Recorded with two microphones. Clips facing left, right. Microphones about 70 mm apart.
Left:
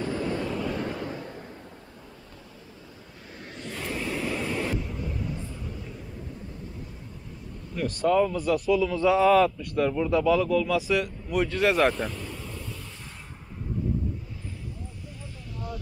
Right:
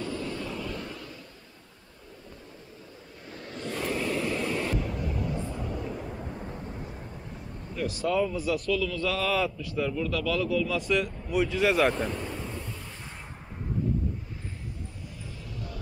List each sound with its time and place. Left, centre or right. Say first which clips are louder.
0.0 s vehicle: left 5 dB; left
0.8 s a sound: left 8 dB; left
3.6 s vehicle: right 3 dB; centre
5.9 s a sound: right 5 dB; right
7.7 s speech: left 4 dB; centre
8.6 s a man's voice: left 6 dB; left
9.3 s speech: left 7 dB; centre
9.8 s a man's voice: left 8 dB; left
10.4 s speech: left 3 dB; centre
12.1 s vehicle: right 3 dB; right